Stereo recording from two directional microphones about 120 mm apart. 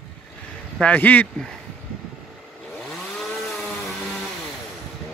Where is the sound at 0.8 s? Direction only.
15° left (ahead or behind).